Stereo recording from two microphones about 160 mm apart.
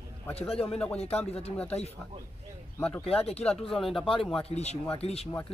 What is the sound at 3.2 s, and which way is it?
Speech, 40° left (ahead or behind).